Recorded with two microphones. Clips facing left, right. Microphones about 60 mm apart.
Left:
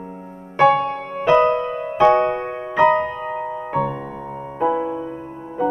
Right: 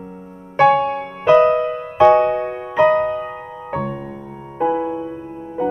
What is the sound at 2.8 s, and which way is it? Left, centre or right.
Music, centre.